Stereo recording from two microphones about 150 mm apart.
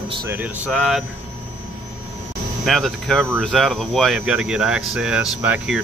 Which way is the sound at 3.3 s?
Centre (ahead or behind).